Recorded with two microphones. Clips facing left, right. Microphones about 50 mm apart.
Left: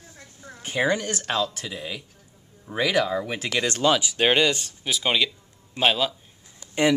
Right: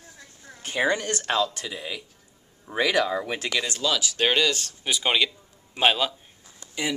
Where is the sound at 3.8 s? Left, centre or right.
Left.